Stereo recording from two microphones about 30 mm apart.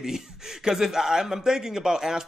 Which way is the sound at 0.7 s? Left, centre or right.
Centre.